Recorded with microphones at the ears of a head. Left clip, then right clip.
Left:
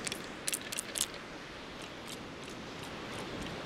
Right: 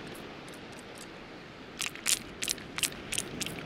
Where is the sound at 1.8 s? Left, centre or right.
Right.